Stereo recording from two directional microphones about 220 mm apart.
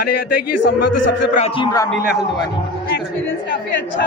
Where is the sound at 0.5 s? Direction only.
90° left.